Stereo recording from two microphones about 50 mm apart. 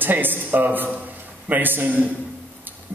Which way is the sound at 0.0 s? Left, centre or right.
Right.